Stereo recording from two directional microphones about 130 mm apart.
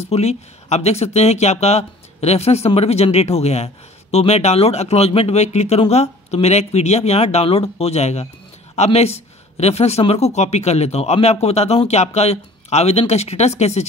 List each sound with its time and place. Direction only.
0.0 s speech: 55° left (ahead or behind)